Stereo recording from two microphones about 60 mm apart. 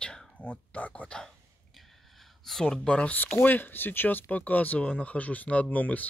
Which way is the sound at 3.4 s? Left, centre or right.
Left.